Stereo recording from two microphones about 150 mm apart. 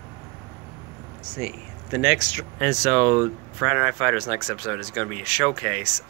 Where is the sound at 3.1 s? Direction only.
20° right (ahead or behind).